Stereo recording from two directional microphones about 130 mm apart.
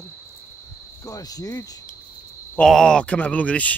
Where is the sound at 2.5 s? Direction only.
5° left (ahead or behind).